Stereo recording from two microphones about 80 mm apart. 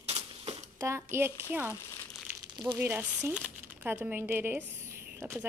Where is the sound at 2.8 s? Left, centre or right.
Right.